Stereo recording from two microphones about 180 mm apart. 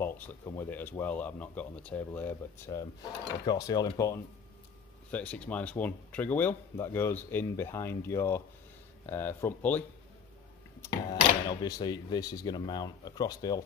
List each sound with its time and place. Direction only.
0.0 s speech: 10° left (ahead or behind)
5.1 s speech: 5° left (ahead or behind)
11.4 s speech: 20° left (ahead or behind)